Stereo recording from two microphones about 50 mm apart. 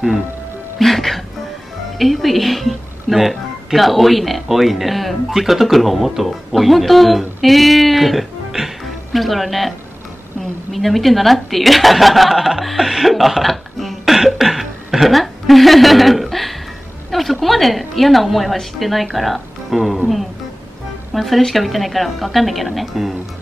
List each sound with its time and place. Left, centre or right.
0.7 s a woman's voice: centre
21.1 s a woman's voice: centre